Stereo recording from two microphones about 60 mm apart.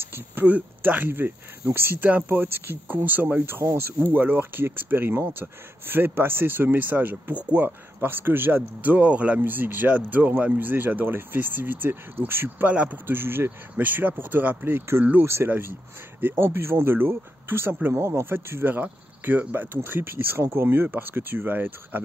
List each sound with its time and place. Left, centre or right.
0.0 s a sound: right
0.5 s speech: right
2.0 s speech: right
9.4 s speech: right
12.6 s speech: right
13.0 s speech: right
15.2 s speech: right